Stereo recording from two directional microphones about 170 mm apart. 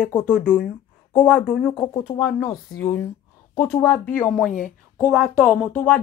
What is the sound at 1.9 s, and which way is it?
Speech, 15° left (ahead or behind).